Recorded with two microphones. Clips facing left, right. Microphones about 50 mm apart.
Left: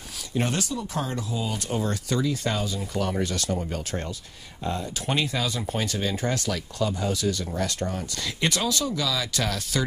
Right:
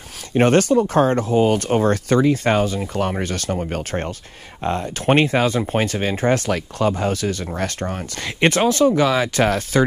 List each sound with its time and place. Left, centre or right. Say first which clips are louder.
0.3 s speech: right 13 dB; right